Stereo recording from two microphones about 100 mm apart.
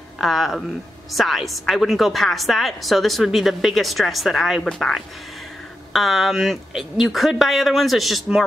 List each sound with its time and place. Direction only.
0.2 s a woman's voice: centre (ahead or behind)